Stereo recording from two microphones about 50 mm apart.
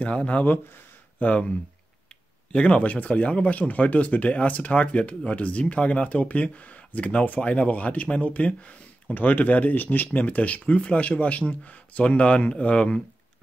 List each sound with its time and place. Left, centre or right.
0.0 s speech: left
9.1 s speech: left